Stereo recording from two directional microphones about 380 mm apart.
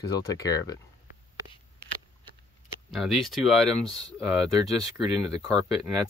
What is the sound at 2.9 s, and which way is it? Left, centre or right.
Speech, centre.